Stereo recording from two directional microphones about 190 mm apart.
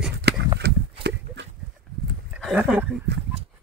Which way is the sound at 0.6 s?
60° right (ahead or behind).